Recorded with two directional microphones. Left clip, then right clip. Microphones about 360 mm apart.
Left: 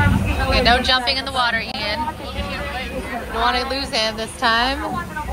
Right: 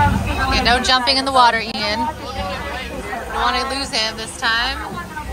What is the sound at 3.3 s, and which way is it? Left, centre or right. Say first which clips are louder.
A woman's voice: even; centre.